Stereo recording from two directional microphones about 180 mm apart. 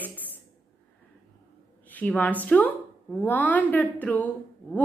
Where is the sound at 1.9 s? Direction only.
10° left (ahead or behind).